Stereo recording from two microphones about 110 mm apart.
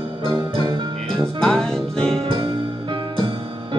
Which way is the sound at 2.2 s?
55° right (ahead or behind).